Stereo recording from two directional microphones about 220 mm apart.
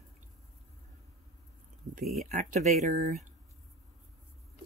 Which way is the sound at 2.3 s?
35° right (ahead or behind).